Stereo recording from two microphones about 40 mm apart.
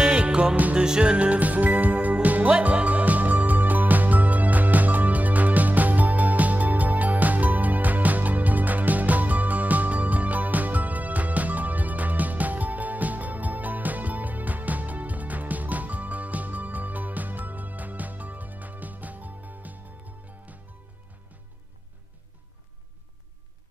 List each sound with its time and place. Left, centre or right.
0.0 s music: right